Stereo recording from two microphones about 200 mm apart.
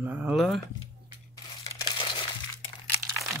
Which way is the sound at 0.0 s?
10° right (ahead or behind).